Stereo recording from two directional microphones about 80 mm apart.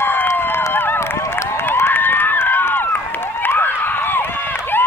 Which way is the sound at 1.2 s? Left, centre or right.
Left.